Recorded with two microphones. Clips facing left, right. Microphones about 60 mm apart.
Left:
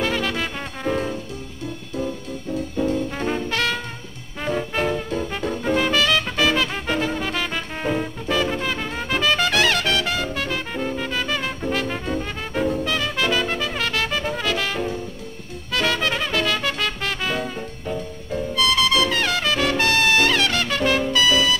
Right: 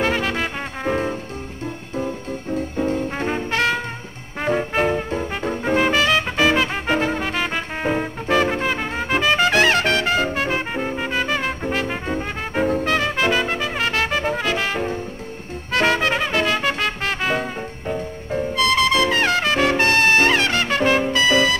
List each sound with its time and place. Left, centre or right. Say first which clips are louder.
0.0 s music: right 2 dB; right